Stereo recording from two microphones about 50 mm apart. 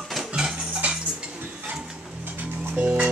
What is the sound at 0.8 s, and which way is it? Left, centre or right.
Cutlery, right.